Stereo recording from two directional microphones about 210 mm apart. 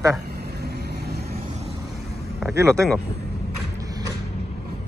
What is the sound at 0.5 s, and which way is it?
Vehicle, 50° right (ahead or behind).